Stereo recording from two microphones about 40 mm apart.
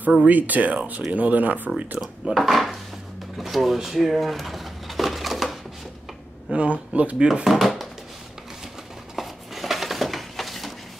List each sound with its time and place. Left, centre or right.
0.3 s speech: right
2.0 s speech: centre
3.3 s drawer open or close: centre
6.5 s speech: right
7.4 s a sound: centre
9.1 s a sound: centre